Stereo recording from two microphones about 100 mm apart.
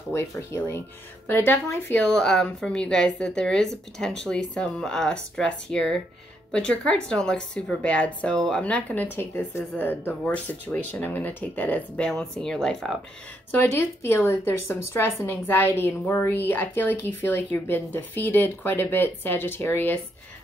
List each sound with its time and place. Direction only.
0.1 s speech: 25° left (ahead or behind)
2.0 s speech: 10° left (ahead or behind)
13.5 s speech: 25° left (ahead or behind)